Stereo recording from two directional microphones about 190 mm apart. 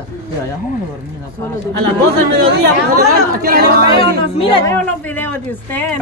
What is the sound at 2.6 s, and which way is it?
A woman's voice, 50° right (ahead or behind).